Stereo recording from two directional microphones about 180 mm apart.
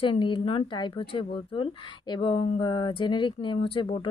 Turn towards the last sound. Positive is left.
turn(degrees=30)  # may be behind; listen again after turning